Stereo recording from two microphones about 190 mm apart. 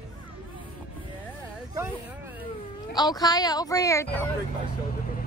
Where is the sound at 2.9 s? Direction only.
20° left (ahead or behind).